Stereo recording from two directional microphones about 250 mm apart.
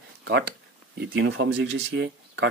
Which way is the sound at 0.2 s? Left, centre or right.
Right.